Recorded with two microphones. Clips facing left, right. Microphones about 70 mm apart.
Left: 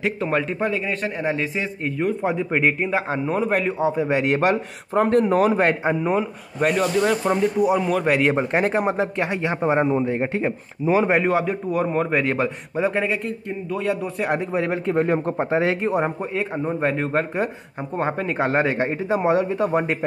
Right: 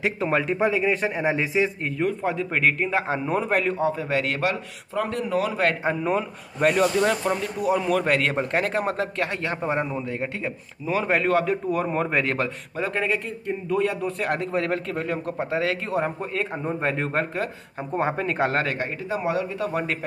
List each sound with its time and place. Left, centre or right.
0.0 s a man's voice: centre
4.4 s a man's voice: left
5.6 s speech: left
6.0 s a man's voice: centre
7.2 s speech: centre
14.9 s speech: left
16.3 s a man's voice: centre
18.6 s speech: left